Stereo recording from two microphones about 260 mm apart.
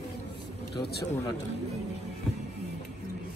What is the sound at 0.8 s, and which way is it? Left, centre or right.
Speech, left.